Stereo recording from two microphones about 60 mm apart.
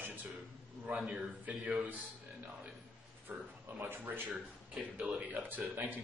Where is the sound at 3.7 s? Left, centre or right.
Right.